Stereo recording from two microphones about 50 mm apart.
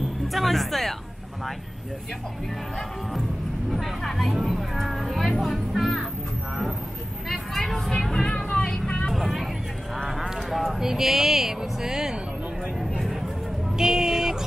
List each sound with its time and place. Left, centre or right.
0.3 s speech: centre
3.7 s speech: centre
7.2 s vehicle: centre
9.1 s vehicle: centre
10.5 s speech: centre
13.7 s a sound: centre